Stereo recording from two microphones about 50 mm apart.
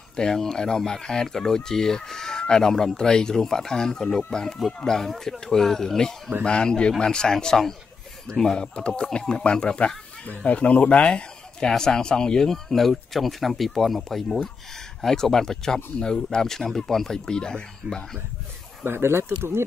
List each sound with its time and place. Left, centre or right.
0.1 s speech: centre
10.2 s speech: left
18.9 s speech: right